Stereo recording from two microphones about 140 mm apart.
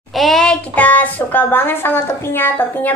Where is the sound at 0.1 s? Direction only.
Centre (ahead or behind).